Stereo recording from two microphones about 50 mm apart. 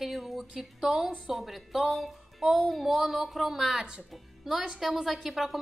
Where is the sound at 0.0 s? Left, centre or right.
Centre.